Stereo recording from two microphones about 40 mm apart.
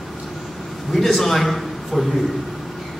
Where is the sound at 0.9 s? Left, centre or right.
Centre.